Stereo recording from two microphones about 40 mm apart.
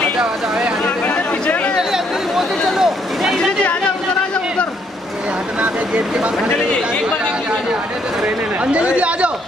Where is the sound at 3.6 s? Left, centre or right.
Left.